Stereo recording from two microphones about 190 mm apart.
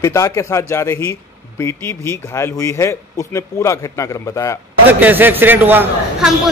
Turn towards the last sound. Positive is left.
turn(degrees=-5)  # may be behind; listen again after turning